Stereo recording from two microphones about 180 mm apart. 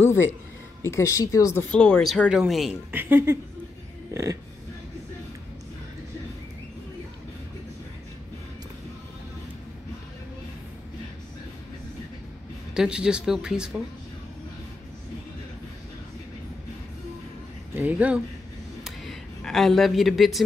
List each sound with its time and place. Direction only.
0.8 s speech: 15° left (ahead or behind)
1.7 s speech: 5° left (ahead or behind); by 4.4 s 15° right (ahead or behind)
12.7 s speech: 5° right (ahead or behind)
17.7 s speech: 10° right (ahead or behind)
18.9 s a sound: centre (ahead or behind)